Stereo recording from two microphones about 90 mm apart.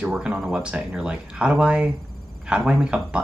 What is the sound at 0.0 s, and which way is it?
Speech, 10° right (ahead or behind).